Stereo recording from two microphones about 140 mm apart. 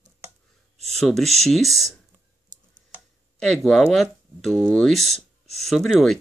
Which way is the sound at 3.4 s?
Centre (ahead or behind).